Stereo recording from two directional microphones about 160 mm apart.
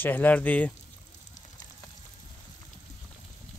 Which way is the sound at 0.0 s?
10° left (ahead or behind).